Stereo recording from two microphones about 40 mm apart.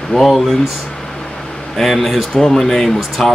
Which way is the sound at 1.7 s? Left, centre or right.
Centre.